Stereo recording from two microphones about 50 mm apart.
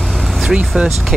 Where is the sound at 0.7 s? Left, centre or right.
Right.